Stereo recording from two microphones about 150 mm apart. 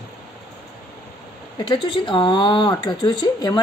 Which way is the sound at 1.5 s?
35° left (ahead or behind).